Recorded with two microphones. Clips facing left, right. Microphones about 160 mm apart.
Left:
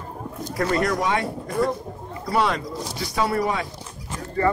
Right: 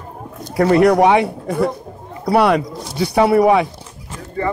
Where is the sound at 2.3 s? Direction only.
65° right (ahead or behind).